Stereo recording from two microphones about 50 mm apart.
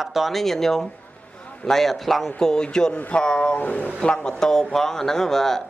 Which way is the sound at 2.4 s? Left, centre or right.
Centre.